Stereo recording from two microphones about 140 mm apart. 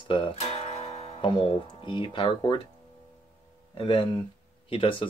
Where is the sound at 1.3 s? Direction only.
35° left (ahead or behind).